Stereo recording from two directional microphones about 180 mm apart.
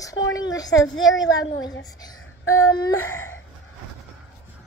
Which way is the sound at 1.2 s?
20° left (ahead or behind).